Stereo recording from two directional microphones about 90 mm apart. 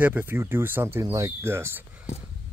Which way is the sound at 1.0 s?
40° right (ahead or behind).